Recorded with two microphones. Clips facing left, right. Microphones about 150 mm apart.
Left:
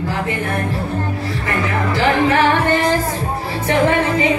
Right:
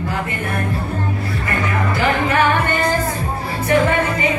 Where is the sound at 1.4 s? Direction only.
90° left.